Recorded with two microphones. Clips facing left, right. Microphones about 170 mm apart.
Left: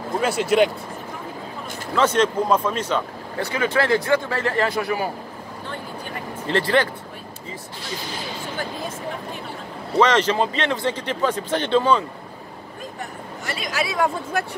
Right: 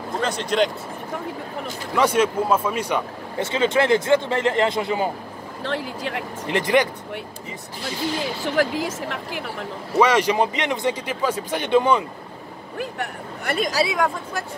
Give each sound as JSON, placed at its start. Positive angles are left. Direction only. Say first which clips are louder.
{"t": 0.2, "sound": "speech", "louder": "left 3 dB", "side_deg": 10}
{"t": 2.0, "sound": "speech", "louder": "even", "side_deg": -10}
{"t": 3.4, "sound": "speech", "louder": "right 2 dB", "side_deg": -25}
{"t": 5.6, "sound": "speech", "louder": "right 7 dB", "side_deg": -90}
{"t": 6.4, "sound": "speech", "louder": "even", "side_deg": -15}
{"t": 8.5, "sound": "speech", "louder": "right 10 dB", "side_deg": -90}
{"t": 9.9, "sound": "speech", "louder": "even", "side_deg": -10}
{"t": 12.7, "sound": "a sound", "louder": "right 6 dB", "side_deg": -65}
{"t": 14.3, "sound": "speech", "louder": "left 5 dB", "side_deg": 60}